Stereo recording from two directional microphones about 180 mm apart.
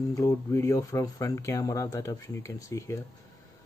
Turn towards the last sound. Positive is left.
turn(degrees=15)  # may be behind; listen again after turning